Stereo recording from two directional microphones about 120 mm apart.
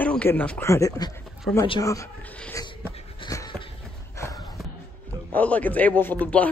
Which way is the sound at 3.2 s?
30° left (ahead or behind).